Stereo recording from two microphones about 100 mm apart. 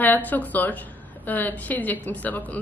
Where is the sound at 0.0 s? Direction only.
20° left (ahead or behind).